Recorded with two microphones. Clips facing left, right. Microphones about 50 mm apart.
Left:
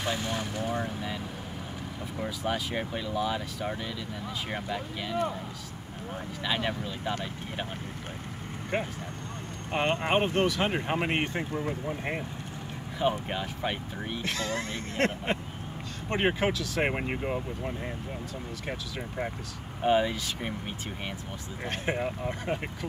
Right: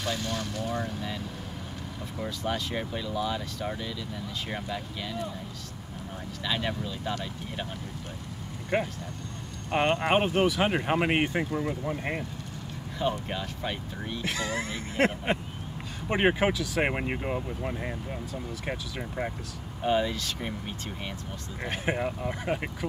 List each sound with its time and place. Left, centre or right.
0.0 s speech: centre
6.4 s speech: centre
8.7 s speech: centre
10.1 s speech: centre
13.3 s speech: centre
14.2 s speech: centre
19.8 s speech: centre
21.6 s speech: centre